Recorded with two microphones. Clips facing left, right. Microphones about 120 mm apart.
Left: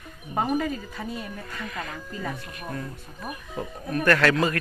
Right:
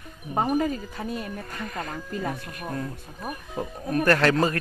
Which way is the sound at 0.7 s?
45° right (ahead or behind).